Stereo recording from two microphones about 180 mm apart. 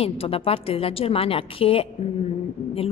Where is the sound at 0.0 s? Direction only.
30° left (ahead or behind).